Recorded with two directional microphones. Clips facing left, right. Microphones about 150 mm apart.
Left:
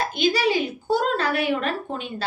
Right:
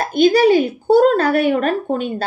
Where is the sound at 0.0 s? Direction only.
50° right (ahead or behind).